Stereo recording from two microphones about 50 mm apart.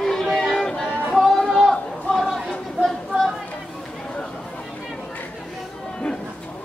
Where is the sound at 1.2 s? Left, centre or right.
Centre.